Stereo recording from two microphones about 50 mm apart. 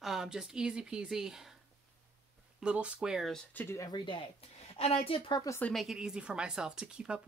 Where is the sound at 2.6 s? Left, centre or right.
Centre.